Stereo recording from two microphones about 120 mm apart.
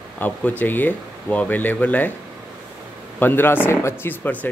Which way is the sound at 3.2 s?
15° left (ahead or behind).